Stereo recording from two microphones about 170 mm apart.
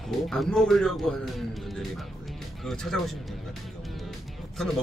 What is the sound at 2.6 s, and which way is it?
Speech, centre (ahead or behind).